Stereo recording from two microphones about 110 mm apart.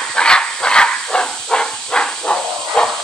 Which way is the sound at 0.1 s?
5° left (ahead or behind).